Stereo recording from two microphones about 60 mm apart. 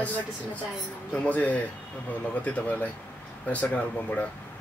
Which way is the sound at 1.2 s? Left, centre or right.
Left.